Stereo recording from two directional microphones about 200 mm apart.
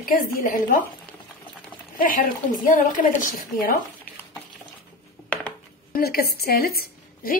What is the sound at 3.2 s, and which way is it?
Speech, 45° left (ahead or behind).